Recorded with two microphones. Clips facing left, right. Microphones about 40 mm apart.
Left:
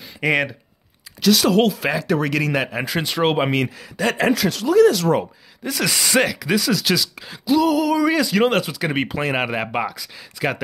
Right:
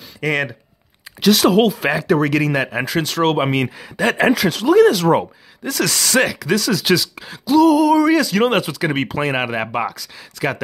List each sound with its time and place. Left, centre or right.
0.2 s speech: centre
1.3 s speech: centre
3.6 s speech: right
4.4 s speech: right
5.7 s speech: centre
5.9 s speech: centre
6.8 s speech: centre